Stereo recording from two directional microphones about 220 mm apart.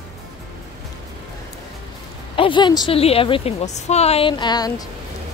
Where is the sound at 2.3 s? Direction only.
20° left (ahead or behind).